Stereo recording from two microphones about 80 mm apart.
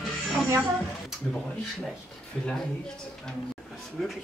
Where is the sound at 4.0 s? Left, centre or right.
Centre.